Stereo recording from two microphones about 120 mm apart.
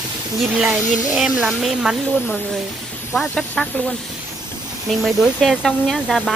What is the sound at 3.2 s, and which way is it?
Speech, 5° left (ahead or behind).